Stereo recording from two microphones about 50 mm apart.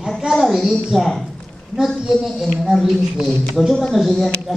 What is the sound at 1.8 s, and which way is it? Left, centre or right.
Speech, centre.